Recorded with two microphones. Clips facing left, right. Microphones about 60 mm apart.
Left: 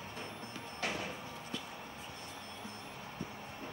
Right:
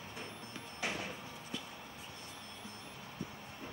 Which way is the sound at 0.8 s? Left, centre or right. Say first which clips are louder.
Left 1 dB; centre.